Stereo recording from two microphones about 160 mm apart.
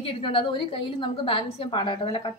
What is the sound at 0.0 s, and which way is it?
A woman's voice, 35° left (ahead or behind).